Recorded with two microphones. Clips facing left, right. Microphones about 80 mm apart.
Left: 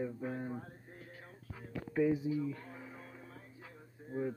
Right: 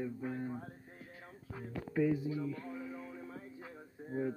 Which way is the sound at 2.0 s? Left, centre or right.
Centre.